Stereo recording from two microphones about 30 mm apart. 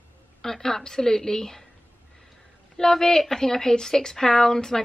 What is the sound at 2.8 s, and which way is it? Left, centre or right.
A woman's voice, centre.